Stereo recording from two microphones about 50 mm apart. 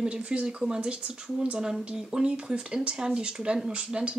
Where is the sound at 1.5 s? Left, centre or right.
Centre.